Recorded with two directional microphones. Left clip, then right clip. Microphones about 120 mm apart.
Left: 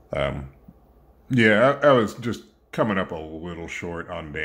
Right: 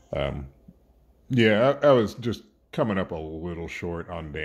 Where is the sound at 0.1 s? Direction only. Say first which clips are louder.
Left 3 dB; 40° right (ahead or behind).